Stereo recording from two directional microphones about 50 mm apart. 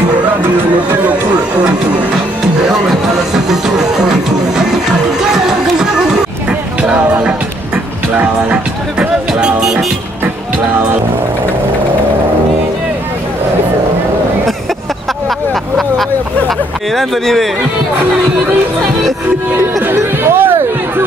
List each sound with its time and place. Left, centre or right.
3.4 s music: centre
5.2 s music: centre
6.8 s music: right
9.6 s music: centre
16.4 s speech: centre
20.0 s speech: right